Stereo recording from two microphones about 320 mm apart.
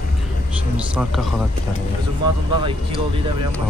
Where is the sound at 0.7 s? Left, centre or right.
Centre.